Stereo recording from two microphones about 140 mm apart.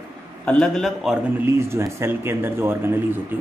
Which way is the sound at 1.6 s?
20° right (ahead or behind).